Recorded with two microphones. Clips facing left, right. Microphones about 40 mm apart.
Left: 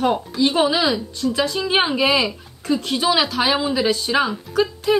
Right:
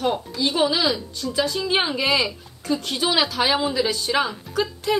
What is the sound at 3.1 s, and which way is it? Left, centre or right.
A woman's voice, centre.